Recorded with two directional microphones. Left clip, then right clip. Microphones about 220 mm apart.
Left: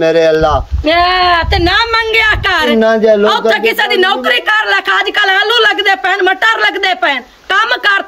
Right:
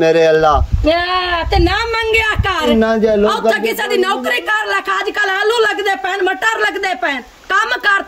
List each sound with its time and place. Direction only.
0.0 s speech: 5° right (ahead or behind)